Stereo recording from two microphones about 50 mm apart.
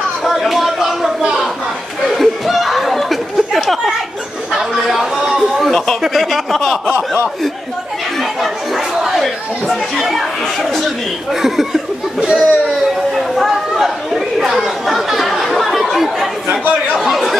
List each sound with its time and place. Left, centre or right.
0.2 s a sound: centre
2.1 s a sound: centre
5.6 s speech: centre
8.2 s chatter: centre
11.4 s speech: centre
12.2 s speech: centre
12.6 s chatter: centre